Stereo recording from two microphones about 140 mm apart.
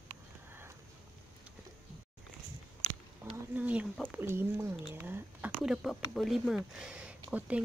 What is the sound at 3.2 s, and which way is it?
Speech, 10° right (ahead or behind).